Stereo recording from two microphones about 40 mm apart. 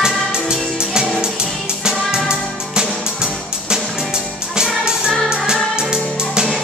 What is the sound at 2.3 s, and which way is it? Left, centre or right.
Music, centre.